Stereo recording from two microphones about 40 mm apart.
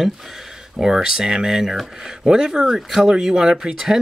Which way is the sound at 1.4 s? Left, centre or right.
Centre.